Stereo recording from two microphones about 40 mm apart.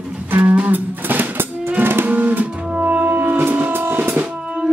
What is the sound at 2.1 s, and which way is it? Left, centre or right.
Music, right.